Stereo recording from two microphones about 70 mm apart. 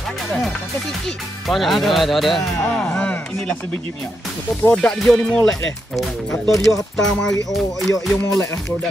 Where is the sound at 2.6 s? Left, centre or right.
Centre.